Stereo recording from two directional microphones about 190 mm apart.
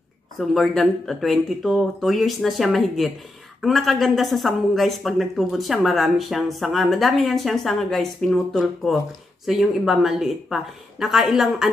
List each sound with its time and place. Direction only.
0.4 s speech: centre (ahead or behind)